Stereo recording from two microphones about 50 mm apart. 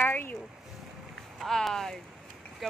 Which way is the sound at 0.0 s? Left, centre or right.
Left.